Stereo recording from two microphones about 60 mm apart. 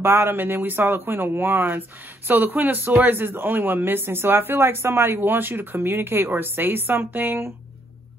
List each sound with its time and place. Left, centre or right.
0.0 s speech: right